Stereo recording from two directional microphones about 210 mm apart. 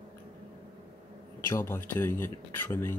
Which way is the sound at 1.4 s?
10° left (ahead or behind).